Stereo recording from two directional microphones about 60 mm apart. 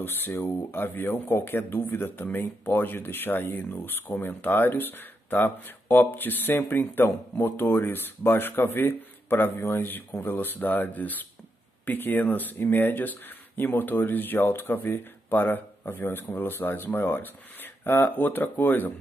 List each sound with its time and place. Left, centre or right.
0.0 s speech: left